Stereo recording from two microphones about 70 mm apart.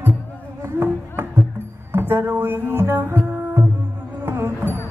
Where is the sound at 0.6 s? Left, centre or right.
Right.